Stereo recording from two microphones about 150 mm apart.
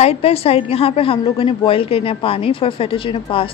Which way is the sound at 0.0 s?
40° left (ahead or behind).